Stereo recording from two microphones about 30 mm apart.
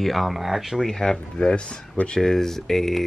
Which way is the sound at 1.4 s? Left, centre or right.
Left.